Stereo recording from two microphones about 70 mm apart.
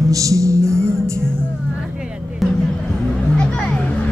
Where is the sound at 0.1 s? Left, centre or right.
Right.